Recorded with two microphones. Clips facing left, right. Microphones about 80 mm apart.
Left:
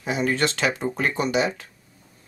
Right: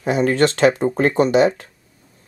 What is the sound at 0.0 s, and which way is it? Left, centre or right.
Speech, right.